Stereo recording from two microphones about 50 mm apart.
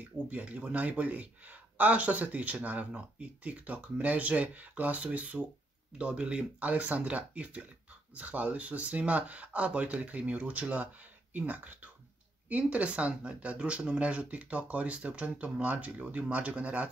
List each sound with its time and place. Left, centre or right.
0.3 s speech: right